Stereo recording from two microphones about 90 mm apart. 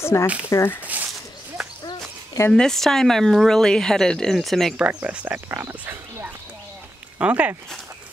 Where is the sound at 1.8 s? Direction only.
45° left (ahead or behind).